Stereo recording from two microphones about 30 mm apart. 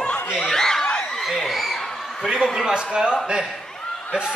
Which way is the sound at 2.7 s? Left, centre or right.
Right.